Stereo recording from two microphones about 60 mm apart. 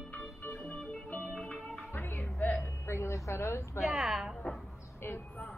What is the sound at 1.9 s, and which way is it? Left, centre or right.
Music, left.